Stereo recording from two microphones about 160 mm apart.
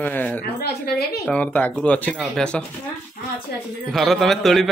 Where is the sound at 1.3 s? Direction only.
10° left (ahead or behind).